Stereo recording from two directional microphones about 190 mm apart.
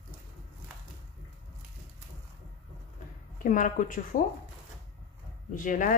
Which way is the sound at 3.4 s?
45° left (ahead or behind).